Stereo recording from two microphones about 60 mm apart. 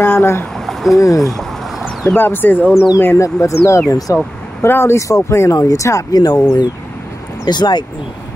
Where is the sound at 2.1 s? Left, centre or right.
Left.